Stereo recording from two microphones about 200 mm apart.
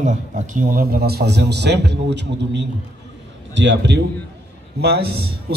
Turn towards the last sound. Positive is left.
turn(degrees=-55)  # may be behind; listen again after turning